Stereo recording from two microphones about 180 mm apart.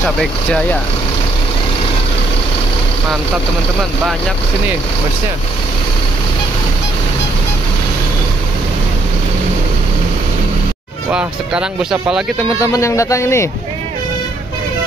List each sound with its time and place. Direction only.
0.2 s speech: 5° left (ahead or behind)
11.1 s speech: 5° right (ahead or behind)
12.5 s speech: 15° left (ahead or behind)